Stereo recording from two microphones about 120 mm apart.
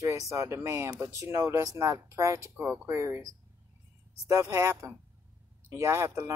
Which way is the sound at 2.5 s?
10° right (ahead or behind).